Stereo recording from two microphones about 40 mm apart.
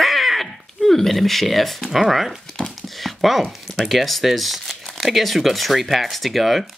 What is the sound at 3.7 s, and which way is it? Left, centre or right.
Speech, centre.